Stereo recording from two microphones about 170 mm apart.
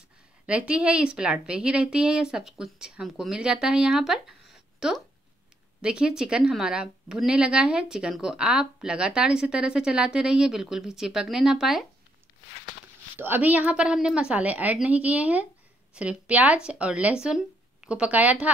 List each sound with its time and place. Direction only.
0.5 s speech: 5° right (ahead or behind)
13.2 s speech: 10° right (ahead or behind)